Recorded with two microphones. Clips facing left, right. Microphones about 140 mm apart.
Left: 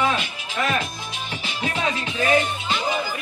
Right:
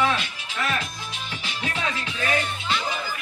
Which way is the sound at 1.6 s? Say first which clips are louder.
Left 4 dB; 20° left (ahead or behind).